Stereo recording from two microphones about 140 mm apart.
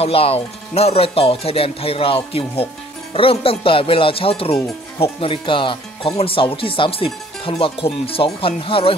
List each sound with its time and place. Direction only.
0.0 s speech: 45° left (ahead or behind)